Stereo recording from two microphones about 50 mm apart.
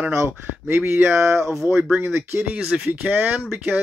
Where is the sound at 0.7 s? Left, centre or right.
Right.